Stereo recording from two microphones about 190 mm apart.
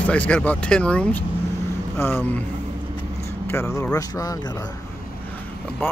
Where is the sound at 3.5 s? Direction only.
15° left (ahead or behind).